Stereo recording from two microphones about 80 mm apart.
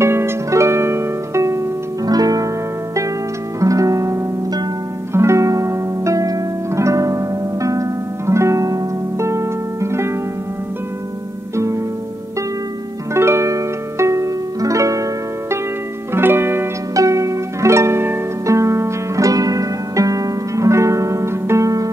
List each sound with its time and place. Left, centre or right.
0.0 s harp: right
2.0 s music: right
3.5 s music: right
11.5 s harp: right
13.1 s music: right
16.1 s music: right
16.9 s harp: right
18.4 s music: right